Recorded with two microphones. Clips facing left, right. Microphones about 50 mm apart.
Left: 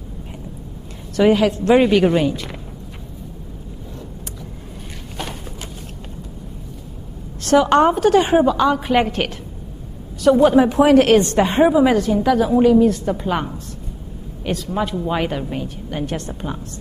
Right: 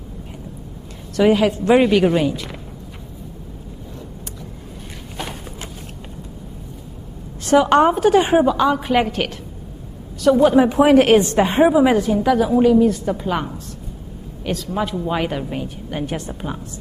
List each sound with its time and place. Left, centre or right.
1.1 s a woman's voice: centre
1.4 s a woman's voice: centre
1.9 s a woman's voice: centre
7.4 s a woman's voice: centre
10.6 s a woman's voice: centre
11.3 s a woman's voice: centre